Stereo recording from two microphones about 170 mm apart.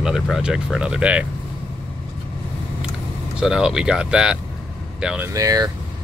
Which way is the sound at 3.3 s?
5° right (ahead or behind).